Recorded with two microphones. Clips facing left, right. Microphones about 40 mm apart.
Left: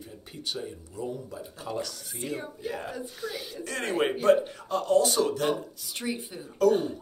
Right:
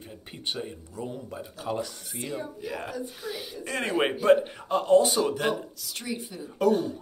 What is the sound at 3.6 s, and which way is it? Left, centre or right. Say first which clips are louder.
Speech: right 1 dB; centre.